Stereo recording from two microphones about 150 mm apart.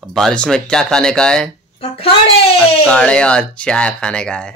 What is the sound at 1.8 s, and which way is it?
Speech, 40° left (ahead or behind).